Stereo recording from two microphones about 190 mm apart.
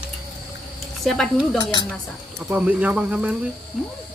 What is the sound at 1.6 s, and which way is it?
Speech, 20° left (ahead or behind).